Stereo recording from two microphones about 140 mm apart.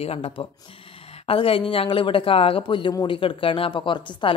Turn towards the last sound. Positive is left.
turn(degrees=35)  # may be behind; listen again after turning